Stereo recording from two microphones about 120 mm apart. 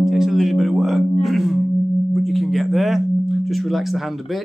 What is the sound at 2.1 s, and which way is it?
Sine wave, centre (ahead or behind).